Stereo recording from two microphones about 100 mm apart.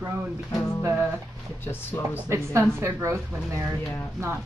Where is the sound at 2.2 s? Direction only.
25° right (ahead or behind).